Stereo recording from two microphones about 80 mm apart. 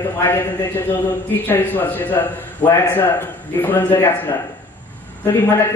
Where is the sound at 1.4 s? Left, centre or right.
Left.